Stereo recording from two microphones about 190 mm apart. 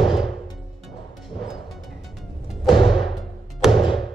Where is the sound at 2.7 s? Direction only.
25° left (ahead or behind).